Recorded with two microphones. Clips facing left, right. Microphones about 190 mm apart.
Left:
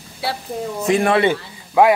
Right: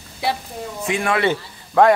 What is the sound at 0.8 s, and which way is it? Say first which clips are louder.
Speech: left 5 dB; 35° left (ahead or behind).